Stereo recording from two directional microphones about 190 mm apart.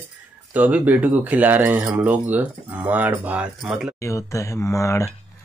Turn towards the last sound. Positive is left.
turn(degrees=15)  # may be behind; listen again after turning